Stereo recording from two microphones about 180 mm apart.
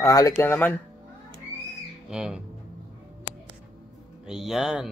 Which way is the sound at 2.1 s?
5° right (ahead or behind).